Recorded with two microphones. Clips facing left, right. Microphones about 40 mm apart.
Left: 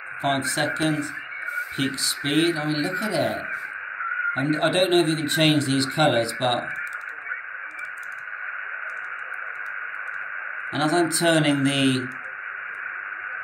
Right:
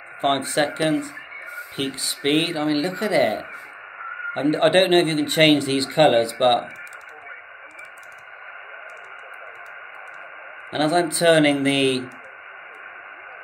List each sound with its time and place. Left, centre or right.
0.2 s a man's voice: right
2.0 s a man's voice: right
4.4 s a man's voice: right
10.7 s speech: right